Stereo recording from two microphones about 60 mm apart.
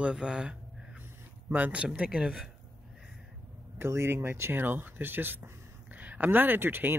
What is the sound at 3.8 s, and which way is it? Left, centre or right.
Speech, right.